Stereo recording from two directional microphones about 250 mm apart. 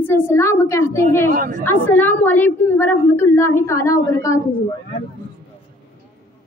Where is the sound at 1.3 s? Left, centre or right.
Right.